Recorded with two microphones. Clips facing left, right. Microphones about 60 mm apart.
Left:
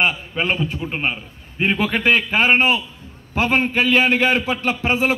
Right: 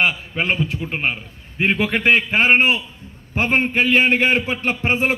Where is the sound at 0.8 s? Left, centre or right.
Right.